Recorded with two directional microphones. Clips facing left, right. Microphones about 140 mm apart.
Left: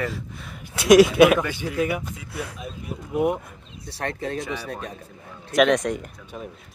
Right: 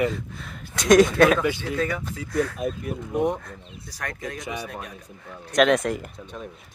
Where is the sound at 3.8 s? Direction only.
30° left (ahead or behind).